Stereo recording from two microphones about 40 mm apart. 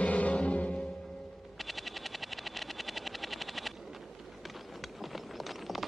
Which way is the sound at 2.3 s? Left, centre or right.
Centre.